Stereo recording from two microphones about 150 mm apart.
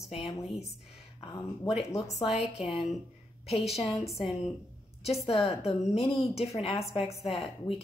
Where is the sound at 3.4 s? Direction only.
45° left (ahead or behind).